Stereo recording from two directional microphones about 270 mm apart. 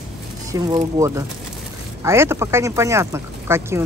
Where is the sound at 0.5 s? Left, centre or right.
Centre.